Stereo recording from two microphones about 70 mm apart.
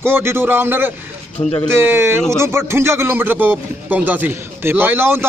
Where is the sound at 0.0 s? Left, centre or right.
Right.